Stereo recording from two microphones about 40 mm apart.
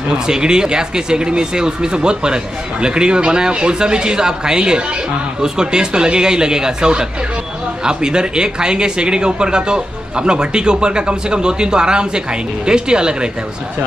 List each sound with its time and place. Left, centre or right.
0.3 s speech: centre